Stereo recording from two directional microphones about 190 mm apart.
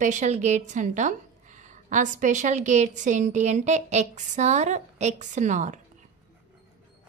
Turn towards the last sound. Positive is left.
turn(degrees=-40)  # may be behind; listen again after turning